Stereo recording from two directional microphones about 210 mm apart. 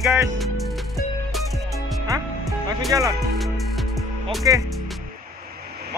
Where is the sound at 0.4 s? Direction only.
Centre (ahead or behind).